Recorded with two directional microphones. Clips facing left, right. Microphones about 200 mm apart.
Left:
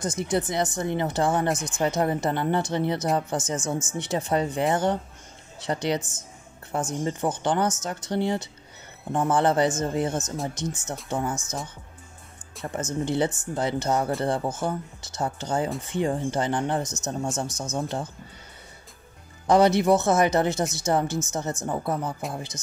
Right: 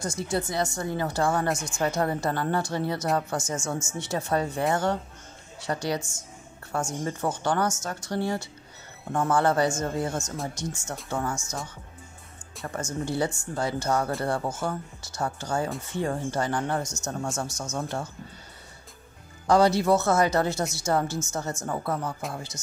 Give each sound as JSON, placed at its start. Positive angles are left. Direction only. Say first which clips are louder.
{"t": 0.0, "sound": "speech", "louder": "left 3 dB", "side_deg": 20}
{"t": 12.6, "sound": "speech", "louder": "left 3 dB", "side_deg": 20}
{"t": 19.4, "sound": "speech", "louder": "left 2 dB", "side_deg": 20}